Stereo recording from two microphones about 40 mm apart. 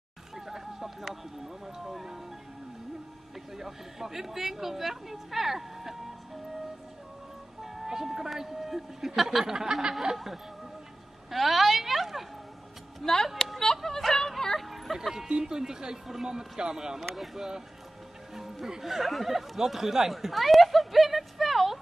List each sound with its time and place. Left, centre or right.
0.5 s a sound: centre
1.8 s speech: centre
3.5 s speech: centre
7.6 s speech: centre
10.1 s speech: centre
11.2 s a sound: centre
13.0 s speech: centre
14.3 s music: centre
14.6 s a sound: centre
15.2 s speech: right; by 21.7 s centre